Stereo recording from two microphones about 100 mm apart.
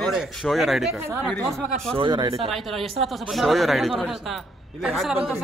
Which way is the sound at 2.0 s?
50° right (ahead or behind).